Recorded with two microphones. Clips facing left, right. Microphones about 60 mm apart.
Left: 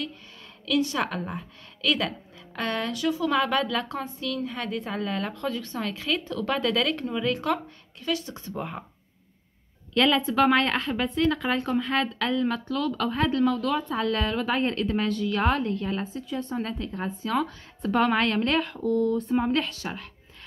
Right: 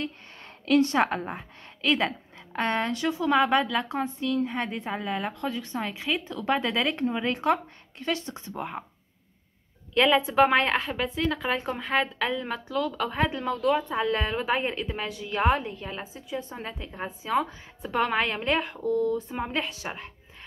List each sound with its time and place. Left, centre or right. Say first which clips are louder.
0.7 s a woman's voice: right 4 dB; right
8.5 s a woman's voice: even; centre
9.9 s a woman's voice: right 1 dB; centre
11.6 s a woman's voice: left 1 dB; centre
17.8 s a woman's voice: left 3 dB; centre
19.6 s a woman's voice: left 1 dB; right